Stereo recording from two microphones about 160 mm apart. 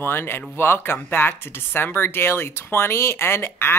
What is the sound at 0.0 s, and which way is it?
Speech, 15° left (ahead or behind).